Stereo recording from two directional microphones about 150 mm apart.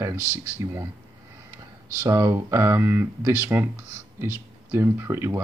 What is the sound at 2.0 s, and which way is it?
Speech, 20° right (ahead or behind).